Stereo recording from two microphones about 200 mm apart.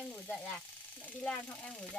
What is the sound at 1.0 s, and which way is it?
Speech, 5° left (ahead or behind).